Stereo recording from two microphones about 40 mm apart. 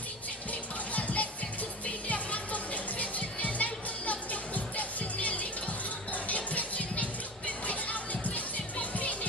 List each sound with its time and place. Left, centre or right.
0.5 s music: left